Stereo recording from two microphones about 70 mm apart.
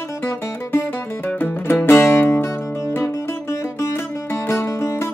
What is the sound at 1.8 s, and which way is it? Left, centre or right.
Music, left.